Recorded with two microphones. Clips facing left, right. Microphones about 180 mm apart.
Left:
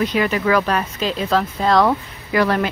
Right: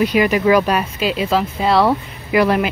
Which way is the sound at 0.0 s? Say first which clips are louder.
Right 4 dB; 10° right (ahead or behind).